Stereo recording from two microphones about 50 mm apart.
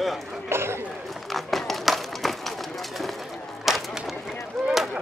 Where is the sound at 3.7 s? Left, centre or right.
Centre.